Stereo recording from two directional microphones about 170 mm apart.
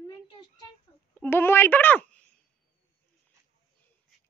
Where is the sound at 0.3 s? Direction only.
25° left (ahead or behind).